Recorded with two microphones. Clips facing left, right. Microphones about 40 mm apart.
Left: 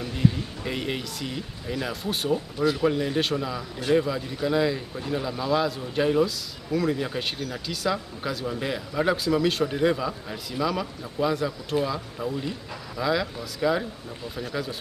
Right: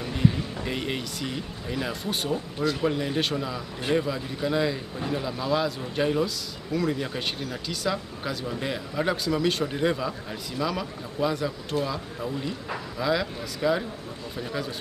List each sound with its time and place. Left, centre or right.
0.7 s speech: centre